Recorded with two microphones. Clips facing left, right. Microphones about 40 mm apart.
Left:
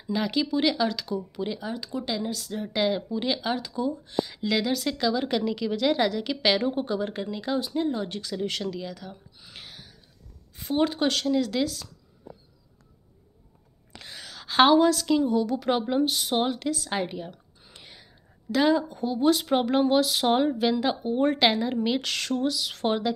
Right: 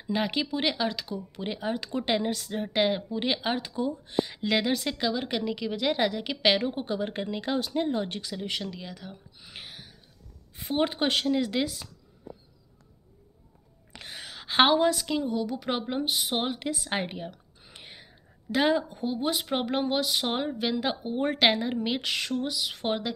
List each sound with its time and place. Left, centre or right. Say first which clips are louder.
0.0 s speech: left 2 dB; right
1.3 s speech: even; right
8.4 s a sound: left 6 dB; centre
10.5 s speech: left 2 dB; centre
13.9 s a woman's voice: right 1 dB; right
17.6 s whispering: right 1 dB; right
19.5 s speech: left 6 dB; centre